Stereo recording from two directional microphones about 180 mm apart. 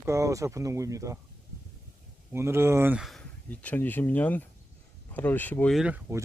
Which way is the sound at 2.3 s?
15° right (ahead or behind).